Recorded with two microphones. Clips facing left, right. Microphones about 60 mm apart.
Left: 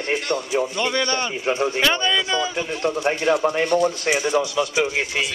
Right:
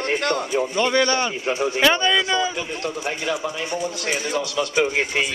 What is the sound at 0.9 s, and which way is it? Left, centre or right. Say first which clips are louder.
Speech: right 3 dB; centre.